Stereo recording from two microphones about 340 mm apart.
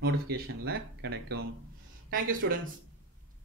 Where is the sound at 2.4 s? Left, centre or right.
Right.